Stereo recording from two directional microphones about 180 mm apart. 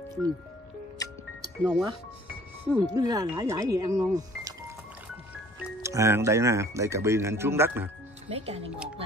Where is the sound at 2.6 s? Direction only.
20° right (ahead or behind).